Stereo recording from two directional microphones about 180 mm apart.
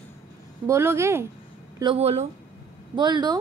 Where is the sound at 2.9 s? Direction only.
25° right (ahead or behind).